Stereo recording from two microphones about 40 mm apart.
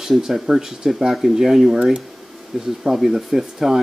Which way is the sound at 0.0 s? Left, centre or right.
Centre.